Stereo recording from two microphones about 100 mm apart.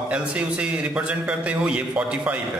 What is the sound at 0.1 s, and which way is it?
A man's voice, 10° right (ahead or behind).